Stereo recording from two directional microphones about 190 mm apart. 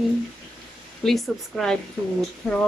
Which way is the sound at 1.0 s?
Centre (ahead or behind).